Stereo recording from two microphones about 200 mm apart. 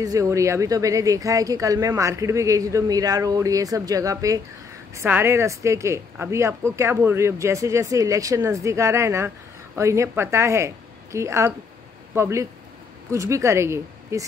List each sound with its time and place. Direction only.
0.0 s speech: 15° right (ahead or behind)